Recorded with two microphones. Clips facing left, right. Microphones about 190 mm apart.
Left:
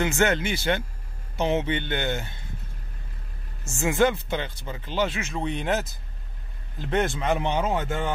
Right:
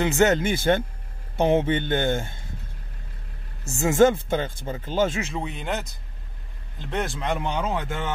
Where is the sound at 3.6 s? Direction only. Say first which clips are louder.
Right 4 dB; 35° right (ahead or behind).